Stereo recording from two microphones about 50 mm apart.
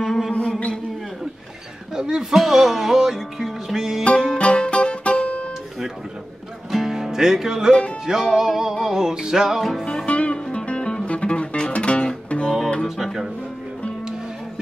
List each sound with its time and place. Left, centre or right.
0.3 s music: left
2.0 s speech: centre
4.3 s music: left
6.7 s music: centre
10.0 s music: left
12.8 s music: centre